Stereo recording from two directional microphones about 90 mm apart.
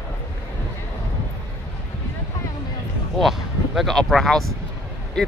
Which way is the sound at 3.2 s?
Centre (ahead or behind).